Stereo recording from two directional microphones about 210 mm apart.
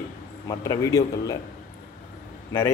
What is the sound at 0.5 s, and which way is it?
Speech, 15° left (ahead or behind).